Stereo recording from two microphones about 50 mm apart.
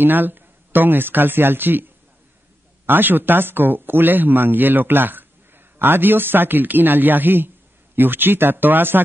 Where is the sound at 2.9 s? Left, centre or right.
Right.